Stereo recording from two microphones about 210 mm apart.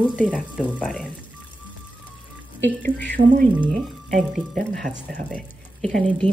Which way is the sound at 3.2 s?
35° right (ahead or behind).